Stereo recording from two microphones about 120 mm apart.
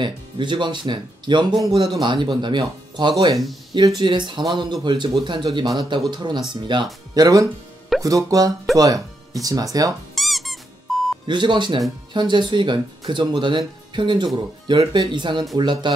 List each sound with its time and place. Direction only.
0.0 s speech: 40° right (ahead or behind)
7.2 s speech: 30° right (ahead or behind)
10.1 s squeak: centre (ahead or behind)
11.2 s speech: 40° right (ahead or behind)